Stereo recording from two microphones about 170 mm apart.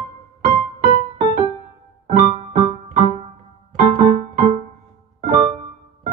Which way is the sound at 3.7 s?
55° right (ahead or behind).